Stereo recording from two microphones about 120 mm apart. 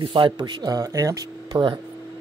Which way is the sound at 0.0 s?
40° right (ahead or behind).